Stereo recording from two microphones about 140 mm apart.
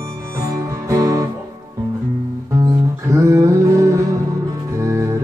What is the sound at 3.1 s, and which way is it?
Music, 20° right (ahead or behind).